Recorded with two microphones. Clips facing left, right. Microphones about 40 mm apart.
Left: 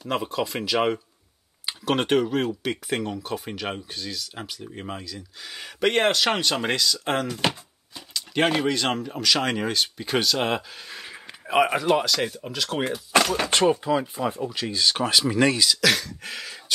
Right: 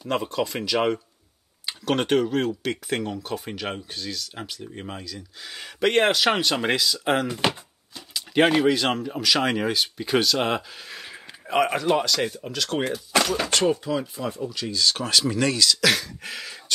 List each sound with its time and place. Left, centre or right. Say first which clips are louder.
0.0 s speech: right 1 dB; centre
13.4 s speech: left 1 dB; left
15.8 s speech: even; centre